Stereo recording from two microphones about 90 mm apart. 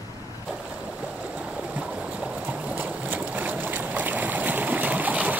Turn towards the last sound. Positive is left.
turn(degrees=-15)  # may be behind; listen again after turning